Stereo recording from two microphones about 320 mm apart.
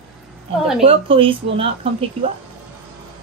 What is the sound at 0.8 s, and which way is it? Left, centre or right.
Speech, centre.